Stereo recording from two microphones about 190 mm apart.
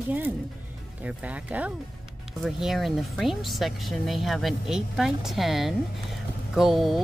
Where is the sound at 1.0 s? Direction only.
5° right (ahead or behind).